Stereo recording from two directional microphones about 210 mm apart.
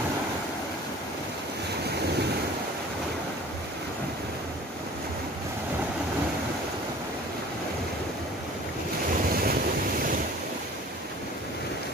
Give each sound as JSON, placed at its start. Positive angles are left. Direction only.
{"t": 9.3, "sound": "waves", "side_deg": -45}